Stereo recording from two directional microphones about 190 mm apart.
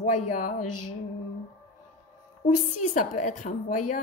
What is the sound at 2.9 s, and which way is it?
A woman's voice, 45° left (ahead or behind).